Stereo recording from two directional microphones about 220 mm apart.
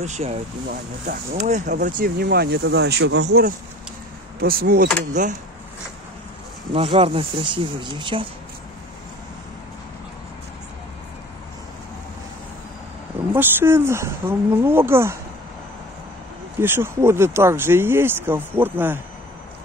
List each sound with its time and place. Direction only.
0.0 s speech: 30° right (ahead or behind)
1.8 s speech: 40° right (ahead or behind)
6.7 s speech: 25° right (ahead or behind)
13.3 s speech: 10° right (ahead or behind)
16.5 s speech: 10° right (ahead or behind)